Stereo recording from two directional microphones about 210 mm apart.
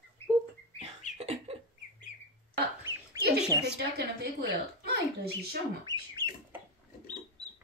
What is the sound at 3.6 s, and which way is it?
A child's voice, 50° right (ahead or behind).